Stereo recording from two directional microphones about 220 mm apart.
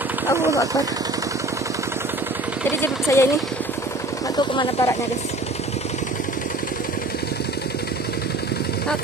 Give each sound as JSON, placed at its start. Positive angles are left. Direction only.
{"t": 2.8, "sound": "speech", "side_deg": 10}
{"t": 4.4, "sound": "speech", "side_deg": 20}